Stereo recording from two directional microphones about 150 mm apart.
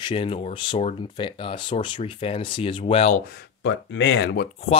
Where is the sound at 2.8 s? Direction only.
45° left (ahead or behind).